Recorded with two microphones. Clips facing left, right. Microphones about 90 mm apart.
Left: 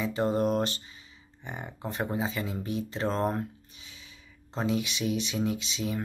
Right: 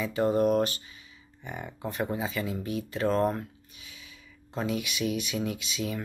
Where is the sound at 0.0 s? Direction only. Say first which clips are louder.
Right 2 dB; 25° left (ahead or behind).